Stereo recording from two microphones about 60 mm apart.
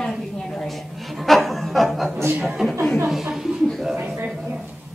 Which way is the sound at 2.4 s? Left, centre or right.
Centre.